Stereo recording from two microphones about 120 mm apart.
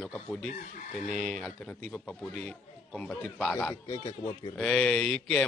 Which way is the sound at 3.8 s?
25° left (ahead or behind).